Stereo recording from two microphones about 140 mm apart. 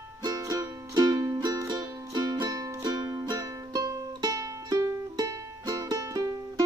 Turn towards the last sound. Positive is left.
turn(degrees=-25)  # may be behind; listen again after turning